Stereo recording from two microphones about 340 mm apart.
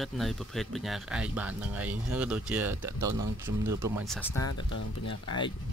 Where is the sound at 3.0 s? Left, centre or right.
Right.